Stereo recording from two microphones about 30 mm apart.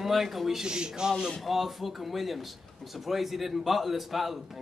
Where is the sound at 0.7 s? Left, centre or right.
Right.